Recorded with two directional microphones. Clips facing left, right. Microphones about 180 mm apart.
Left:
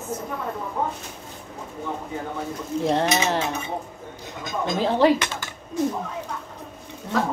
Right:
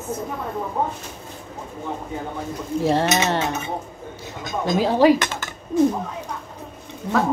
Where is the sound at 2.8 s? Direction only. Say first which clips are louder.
Right 2 dB; 5° right (ahead or behind).